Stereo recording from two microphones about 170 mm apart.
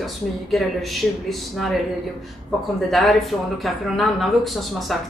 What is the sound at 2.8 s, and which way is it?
Speech, centre (ahead or behind).